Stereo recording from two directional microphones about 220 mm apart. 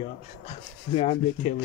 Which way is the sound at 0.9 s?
30° left (ahead or behind).